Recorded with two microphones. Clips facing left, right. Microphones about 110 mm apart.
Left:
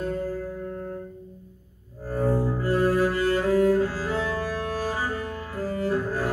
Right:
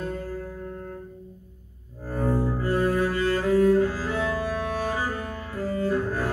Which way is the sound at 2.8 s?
25° left (ahead or behind).